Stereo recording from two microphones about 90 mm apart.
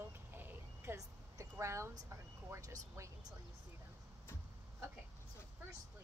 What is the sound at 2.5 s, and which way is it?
Speech, 35° right (ahead or behind).